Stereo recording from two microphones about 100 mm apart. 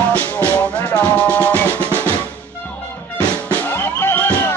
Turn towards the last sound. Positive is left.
turn(degrees=20)  # may be behind; listen again after turning